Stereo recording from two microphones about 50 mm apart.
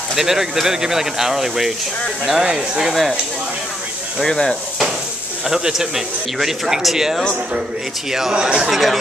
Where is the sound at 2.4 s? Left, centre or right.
Right.